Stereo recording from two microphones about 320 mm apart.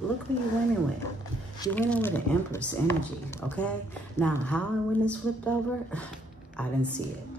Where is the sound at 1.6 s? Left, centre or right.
Centre.